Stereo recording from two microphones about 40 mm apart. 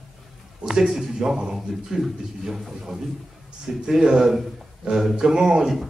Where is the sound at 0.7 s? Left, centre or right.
Centre.